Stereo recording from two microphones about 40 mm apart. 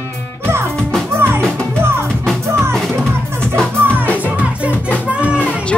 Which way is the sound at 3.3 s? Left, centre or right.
Left.